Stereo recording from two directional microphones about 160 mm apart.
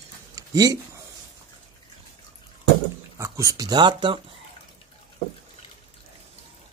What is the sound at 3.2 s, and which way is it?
Speech, 20° right (ahead or behind).